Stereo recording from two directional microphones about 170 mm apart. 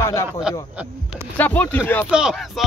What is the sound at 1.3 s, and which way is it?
Speech, 10° left (ahead or behind).